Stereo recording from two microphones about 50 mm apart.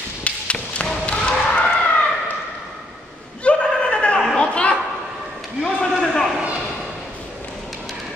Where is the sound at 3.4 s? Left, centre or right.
Centre.